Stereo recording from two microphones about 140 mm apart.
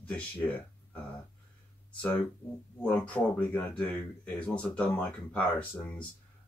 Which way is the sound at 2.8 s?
10° left (ahead or behind).